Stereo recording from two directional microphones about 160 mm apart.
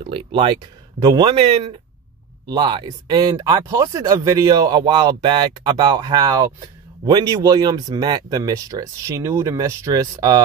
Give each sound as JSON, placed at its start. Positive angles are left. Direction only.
{"t": 0.0, "sound": "speech", "side_deg": -35}